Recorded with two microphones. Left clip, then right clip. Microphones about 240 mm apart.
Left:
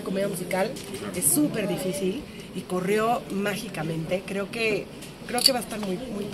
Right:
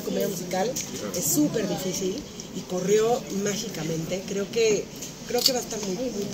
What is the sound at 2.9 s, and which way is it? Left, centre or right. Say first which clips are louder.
Speech: right 2 dB; left.